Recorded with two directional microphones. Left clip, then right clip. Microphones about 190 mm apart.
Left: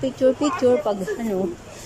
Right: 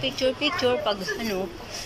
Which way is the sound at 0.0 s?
30° left (ahead or behind).